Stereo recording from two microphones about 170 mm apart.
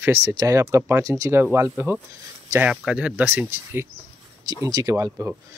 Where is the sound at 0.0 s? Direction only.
15° right (ahead or behind).